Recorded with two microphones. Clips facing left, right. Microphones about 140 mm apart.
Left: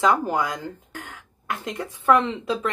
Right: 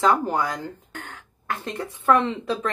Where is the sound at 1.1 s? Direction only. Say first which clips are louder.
Right 1 dB; 15° left (ahead or behind).